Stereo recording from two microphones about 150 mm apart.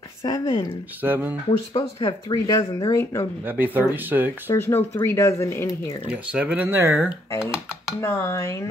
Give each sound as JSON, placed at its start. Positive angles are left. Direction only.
{"t": 0.2, "sound": "speech", "side_deg": 30}
{"t": 1.0, "sound": "speech", "side_deg": -10}
{"t": 2.0, "sound": "speech", "side_deg": 35}
{"t": 3.4, "sound": "speech", "side_deg": -10}
{"t": 4.5, "sound": "speech", "side_deg": 15}
{"t": 6.0, "sound": "speech", "side_deg": -10}
{"t": 8.0, "sound": "speech", "side_deg": 15}